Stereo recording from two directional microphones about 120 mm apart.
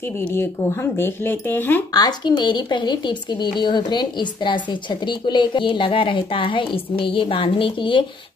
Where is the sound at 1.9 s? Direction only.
35° left (ahead or behind).